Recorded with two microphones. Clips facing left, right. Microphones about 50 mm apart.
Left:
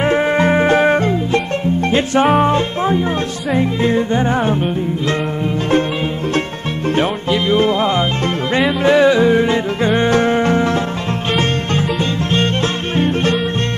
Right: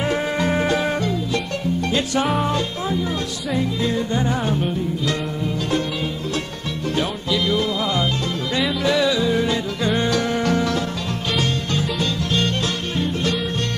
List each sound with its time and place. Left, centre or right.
0.0 s music: left
7.0 s music: left